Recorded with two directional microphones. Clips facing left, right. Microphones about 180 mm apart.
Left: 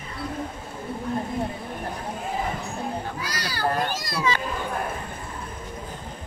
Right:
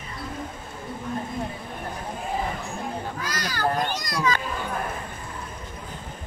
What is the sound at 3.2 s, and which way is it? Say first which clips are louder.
Children playing: right 1 dB; 10° left (ahead or behind).